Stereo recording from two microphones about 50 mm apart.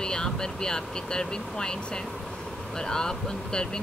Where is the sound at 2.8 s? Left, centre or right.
Centre.